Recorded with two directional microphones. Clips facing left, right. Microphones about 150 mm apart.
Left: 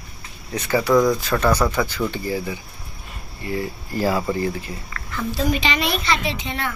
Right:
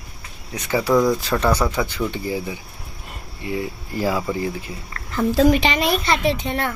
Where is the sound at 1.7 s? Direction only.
20° right (ahead or behind); by 4.5 s 5° right (ahead or behind).